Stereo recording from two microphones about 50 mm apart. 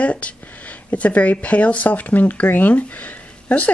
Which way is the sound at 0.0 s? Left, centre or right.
Left.